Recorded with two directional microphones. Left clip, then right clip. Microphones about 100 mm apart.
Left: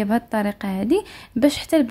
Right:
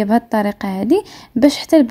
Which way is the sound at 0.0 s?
35° right (ahead or behind).